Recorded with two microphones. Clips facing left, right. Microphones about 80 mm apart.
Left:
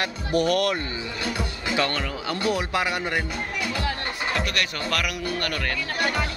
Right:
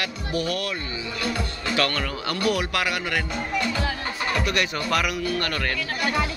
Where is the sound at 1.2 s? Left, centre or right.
Centre.